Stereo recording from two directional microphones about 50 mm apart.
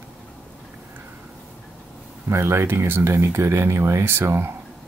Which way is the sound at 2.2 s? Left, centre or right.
Right.